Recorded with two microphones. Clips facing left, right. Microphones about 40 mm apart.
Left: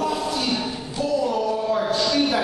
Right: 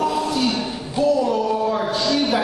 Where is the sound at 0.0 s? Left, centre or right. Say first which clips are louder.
Right 4 dB; centre.